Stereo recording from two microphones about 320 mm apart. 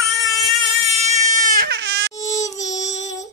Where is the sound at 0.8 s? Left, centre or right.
Centre.